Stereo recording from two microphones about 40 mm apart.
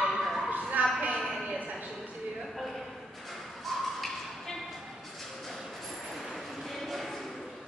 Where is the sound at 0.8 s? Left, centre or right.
Right.